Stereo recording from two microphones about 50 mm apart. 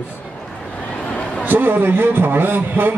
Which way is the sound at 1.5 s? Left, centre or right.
Right.